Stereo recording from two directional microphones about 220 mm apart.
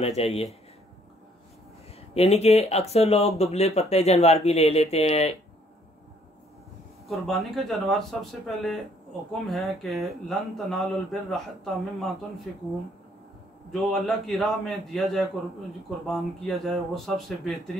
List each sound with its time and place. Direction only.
0.0 s speech: 25° left (ahead or behind)
2.0 s speech: 25° left (ahead or behind)
7.1 s speech: centre (ahead or behind)
13.7 s speech: centre (ahead or behind)